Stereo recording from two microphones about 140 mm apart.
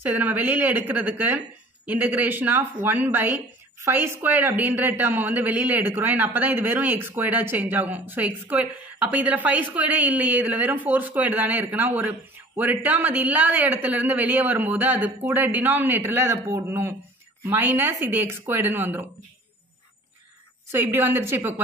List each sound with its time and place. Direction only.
0.0 s speech: 10° right (ahead or behind)
20.7 s speech: 15° right (ahead or behind)